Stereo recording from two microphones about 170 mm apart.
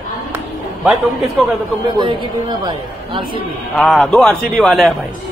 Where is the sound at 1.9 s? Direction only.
30° right (ahead or behind).